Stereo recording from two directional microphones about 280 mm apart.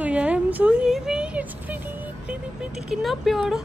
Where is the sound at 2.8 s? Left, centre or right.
Centre.